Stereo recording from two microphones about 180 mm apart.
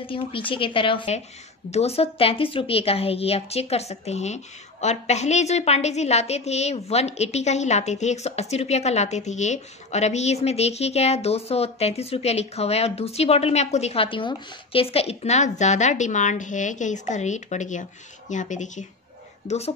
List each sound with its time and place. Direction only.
0.0 s a woman's voice: 30° left (ahead or behind)